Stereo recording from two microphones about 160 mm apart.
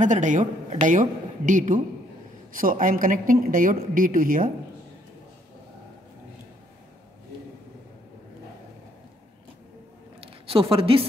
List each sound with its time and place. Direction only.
0.0 s a woman's voice: 50° right (ahead or behind)
10.2 s a woman's voice: 35° right (ahead or behind)